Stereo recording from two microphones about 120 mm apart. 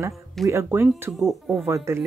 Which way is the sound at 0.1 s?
Centre (ahead or behind).